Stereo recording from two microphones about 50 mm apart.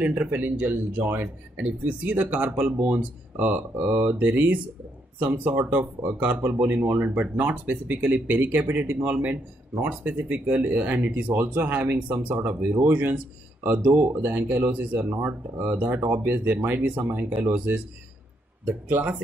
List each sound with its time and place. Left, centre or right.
0.0 s speech: right
5.2 s speech: right
12.4 s speech: right
18.9 s speech: right